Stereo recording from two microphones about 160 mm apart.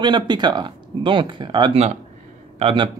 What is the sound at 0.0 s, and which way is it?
Speech, 30° right (ahead or behind).